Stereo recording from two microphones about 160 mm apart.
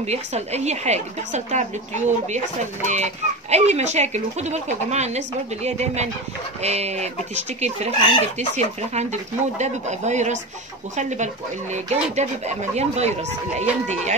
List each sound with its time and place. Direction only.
0.0 s a woman's voice: 45° right (ahead or behind)